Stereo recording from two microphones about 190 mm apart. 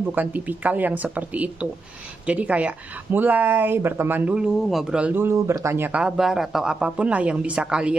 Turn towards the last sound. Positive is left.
turn(degrees=-5)  # may be behind; listen again after turning